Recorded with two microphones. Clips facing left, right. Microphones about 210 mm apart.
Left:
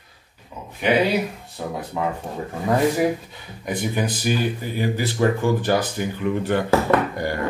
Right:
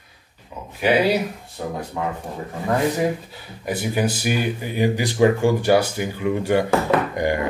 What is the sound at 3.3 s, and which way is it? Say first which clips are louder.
Speech: right 1 dB; 5° right (ahead or behind).